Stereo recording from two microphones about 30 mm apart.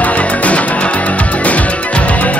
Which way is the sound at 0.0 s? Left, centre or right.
Left.